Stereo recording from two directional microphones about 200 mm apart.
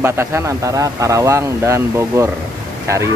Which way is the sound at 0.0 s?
10° right (ahead or behind).